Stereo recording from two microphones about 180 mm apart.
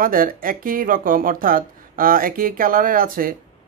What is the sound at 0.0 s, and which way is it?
Speech, 50° right (ahead or behind).